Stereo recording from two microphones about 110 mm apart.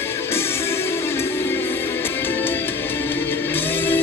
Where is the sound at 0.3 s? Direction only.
20° left (ahead or behind).